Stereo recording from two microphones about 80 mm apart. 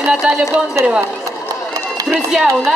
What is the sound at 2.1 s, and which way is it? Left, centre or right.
Speech, centre.